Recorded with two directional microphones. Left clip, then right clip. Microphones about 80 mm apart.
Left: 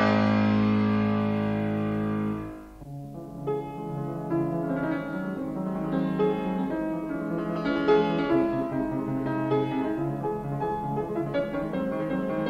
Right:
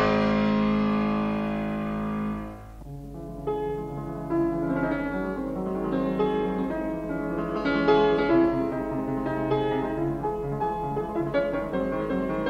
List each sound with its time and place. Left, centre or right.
0.0 s music: left
4.3 s music: centre
11.3 s music: left